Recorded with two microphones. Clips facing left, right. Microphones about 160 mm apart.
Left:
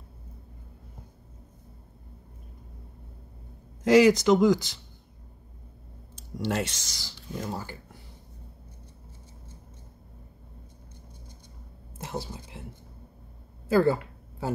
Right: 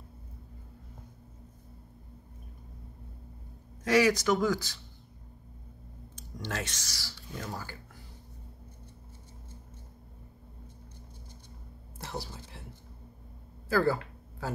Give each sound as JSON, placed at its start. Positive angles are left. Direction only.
{"t": 3.8, "sound": "speech", "side_deg": 20}
{"t": 6.4, "sound": "speech", "side_deg": 25}
{"t": 12.0, "sound": "speech", "side_deg": 20}
{"t": 13.7, "sound": "a sound", "side_deg": 20}